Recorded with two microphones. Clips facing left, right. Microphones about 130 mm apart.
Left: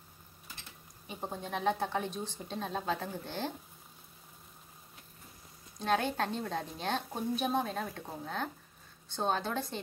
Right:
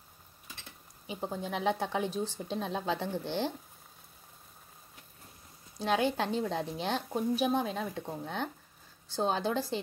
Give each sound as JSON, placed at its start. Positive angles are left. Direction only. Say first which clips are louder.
{"t": 1.0, "sound": "a woman's voice", "louder": "right 4 dB", "side_deg": 0}
{"t": 5.8, "sound": "a woman's voice", "louder": "right 2 dB", "side_deg": -5}